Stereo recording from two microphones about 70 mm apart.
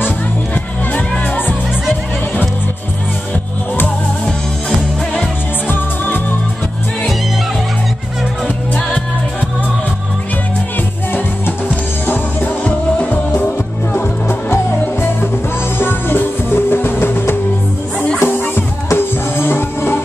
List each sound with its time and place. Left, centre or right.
0.9 s music: centre
5.7 s music: left
12.6 s music: left
15.8 s music: left